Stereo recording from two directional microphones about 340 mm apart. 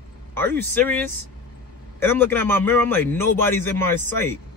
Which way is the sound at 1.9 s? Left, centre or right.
Centre.